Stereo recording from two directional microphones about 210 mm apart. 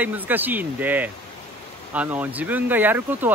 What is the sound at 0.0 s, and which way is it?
Speech, 10° right (ahead or behind).